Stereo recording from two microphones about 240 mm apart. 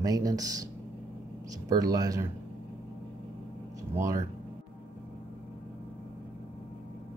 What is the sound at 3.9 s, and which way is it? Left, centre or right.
Speech, centre.